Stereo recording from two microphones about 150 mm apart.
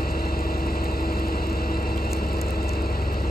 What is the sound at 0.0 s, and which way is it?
Vehicle, 80° left.